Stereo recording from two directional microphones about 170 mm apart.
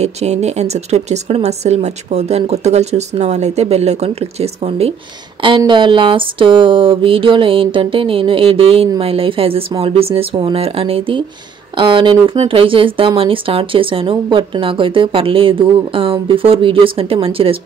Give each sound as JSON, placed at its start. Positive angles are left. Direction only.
{"t": 0.0, "sound": "speech", "side_deg": -40}